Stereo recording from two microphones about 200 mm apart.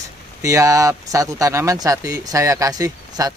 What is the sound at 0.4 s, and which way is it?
Speech, 15° right (ahead or behind).